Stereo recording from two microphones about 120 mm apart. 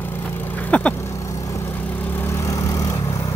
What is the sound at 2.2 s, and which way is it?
Vehicle, 25° left (ahead or behind).